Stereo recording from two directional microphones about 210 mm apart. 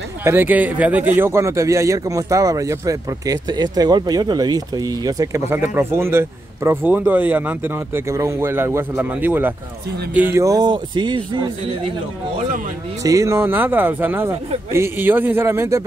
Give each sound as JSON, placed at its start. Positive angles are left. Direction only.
{"t": 0.2, "sound": "speech", "side_deg": -10}
{"t": 13.0, "sound": "speech", "side_deg": -15}